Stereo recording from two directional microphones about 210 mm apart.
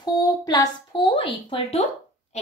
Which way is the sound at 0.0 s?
20° left (ahead or behind).